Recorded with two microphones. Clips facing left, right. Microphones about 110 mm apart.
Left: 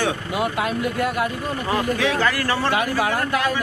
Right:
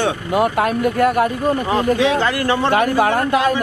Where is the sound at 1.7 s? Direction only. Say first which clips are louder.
Right 3 dB; 20° right (ahead or behind).